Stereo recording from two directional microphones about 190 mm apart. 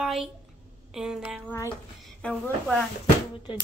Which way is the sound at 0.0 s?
Centre (ahead or behind).